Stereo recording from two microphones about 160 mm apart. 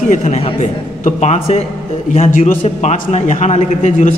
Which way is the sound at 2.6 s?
40° left (ahead or behind).